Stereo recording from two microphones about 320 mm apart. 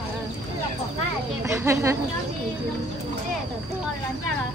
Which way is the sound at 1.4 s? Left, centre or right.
Centre.